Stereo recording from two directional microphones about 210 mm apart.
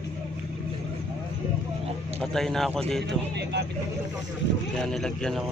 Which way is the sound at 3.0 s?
55° right (ahead or behind).